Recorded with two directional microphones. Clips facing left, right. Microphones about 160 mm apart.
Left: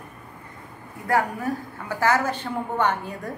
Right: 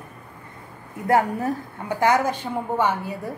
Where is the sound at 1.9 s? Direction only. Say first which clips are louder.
Right 2 dB; 15° right (ahead or behind).